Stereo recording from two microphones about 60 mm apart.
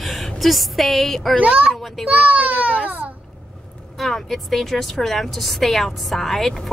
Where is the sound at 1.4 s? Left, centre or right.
Right.